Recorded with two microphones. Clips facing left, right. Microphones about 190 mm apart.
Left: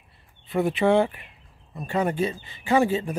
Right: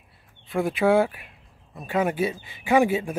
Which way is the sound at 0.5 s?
Centre (ahead or behind).